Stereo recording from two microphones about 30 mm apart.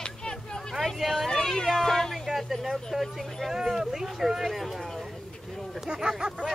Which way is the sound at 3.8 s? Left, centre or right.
Centre.